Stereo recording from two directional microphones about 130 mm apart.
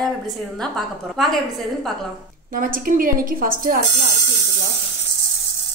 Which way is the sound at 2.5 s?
90° right.